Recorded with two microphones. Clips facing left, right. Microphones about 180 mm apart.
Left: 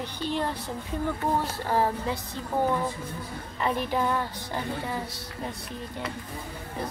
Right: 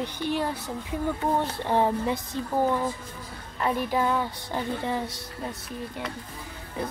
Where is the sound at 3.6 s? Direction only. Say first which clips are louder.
Right 1 dB; centre (ahead or behind).